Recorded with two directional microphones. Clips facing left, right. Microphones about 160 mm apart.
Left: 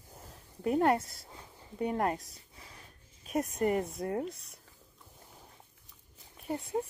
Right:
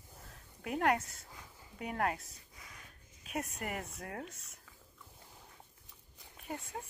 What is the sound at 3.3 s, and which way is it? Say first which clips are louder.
Speech: left 10 dB; 35° left (ahead or behind).